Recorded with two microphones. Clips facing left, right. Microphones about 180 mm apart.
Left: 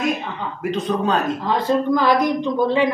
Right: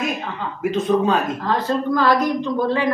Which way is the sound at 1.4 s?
15° left (ahead or behind).